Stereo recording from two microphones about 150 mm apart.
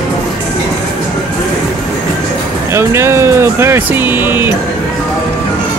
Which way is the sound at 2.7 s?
15° right (ahead or behind).